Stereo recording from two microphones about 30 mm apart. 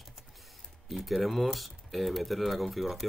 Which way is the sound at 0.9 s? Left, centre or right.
Centre.